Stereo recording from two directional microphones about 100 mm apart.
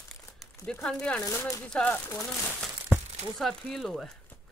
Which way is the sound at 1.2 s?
30° left (ahead or behind).